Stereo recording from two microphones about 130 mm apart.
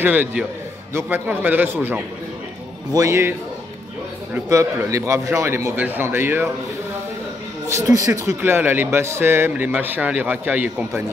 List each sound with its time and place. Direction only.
0.0 s a man's voice: 15° right (ahead or behind)
7.6 s speech: 25° right (ahead or behind)